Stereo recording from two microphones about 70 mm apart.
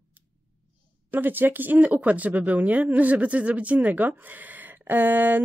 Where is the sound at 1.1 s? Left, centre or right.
Right.